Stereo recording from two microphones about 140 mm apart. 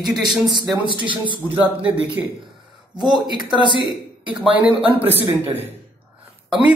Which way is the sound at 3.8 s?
Centre (ahead or behind).